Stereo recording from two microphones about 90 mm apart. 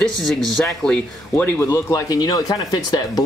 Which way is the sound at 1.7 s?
40° left (ahead or behind).